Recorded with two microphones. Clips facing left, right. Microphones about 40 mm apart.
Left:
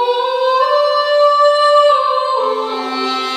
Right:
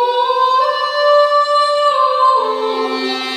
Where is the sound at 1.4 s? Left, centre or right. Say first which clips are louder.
Left 3 dB; centre.